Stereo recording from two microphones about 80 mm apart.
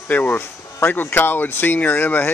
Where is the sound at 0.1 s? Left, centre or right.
Left.